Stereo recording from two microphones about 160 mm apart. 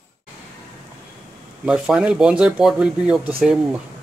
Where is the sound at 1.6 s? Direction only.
5° right (ahead or behind).